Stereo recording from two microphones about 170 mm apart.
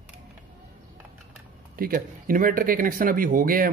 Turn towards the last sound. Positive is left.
turn(degrees=-55)  # may be behind; listen again after turning